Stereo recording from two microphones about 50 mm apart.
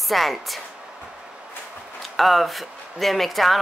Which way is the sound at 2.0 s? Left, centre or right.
Centre.